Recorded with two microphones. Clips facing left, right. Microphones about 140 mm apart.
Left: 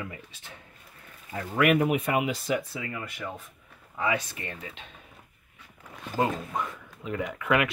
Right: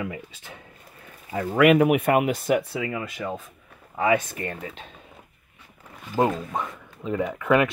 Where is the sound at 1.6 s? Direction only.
80° right.